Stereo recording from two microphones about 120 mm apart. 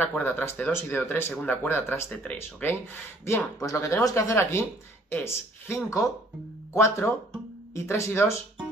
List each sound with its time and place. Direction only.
0.0 s speech: 15° left (ahead or behind)